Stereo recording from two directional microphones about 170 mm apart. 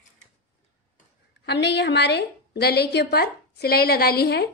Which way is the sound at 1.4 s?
80° left.